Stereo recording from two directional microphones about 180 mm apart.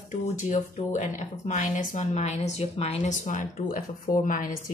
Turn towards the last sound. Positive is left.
turn(degrees=50)  # may be behind; listen again after turning